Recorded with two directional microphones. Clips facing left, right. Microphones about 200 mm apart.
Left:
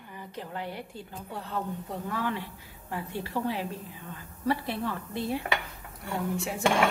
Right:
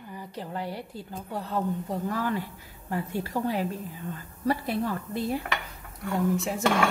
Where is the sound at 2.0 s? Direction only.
40° right (ahead or behind).